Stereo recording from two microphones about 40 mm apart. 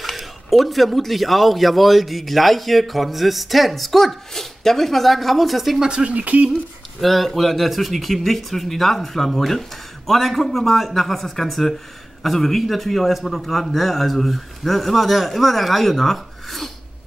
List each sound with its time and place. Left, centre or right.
0.0 s speech: centre
5.8 s speech: right
6.1 s speech: right
7.0 s speech: centre